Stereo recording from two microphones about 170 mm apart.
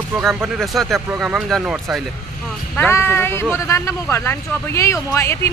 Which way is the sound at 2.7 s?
15° left (ahead or behind).